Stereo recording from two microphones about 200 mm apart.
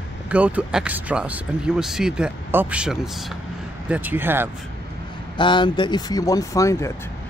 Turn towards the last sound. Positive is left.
turn(degrees=15)  # may be behind; listen again after turning